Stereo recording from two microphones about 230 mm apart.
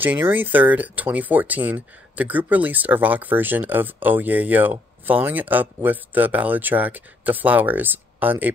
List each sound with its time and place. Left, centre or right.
0.0 s speech: centre